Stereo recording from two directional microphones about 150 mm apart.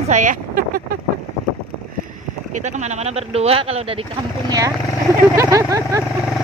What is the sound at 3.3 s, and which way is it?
Speech, 45° right (ahead or behind).